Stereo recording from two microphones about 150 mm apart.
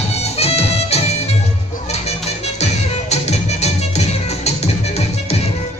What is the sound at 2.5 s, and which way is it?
Music, 45° left (ahead or behind).